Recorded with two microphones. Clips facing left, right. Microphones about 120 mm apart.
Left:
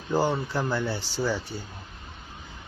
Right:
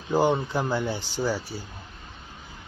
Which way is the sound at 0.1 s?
15° right (ahead or behind).